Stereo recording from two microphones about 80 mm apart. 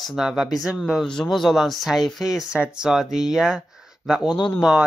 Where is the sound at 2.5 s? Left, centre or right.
Centre.